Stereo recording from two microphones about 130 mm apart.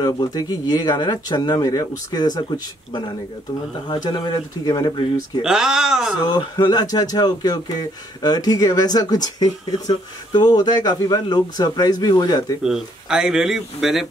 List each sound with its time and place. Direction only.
0.0 s speech: 30° left (ahead or behind)
5.4 s speech: 5° right (ahead or behind)
6.2 s speech: 30° left (ahead or behind)
12.6 s speech: 5° right (ahead or behind)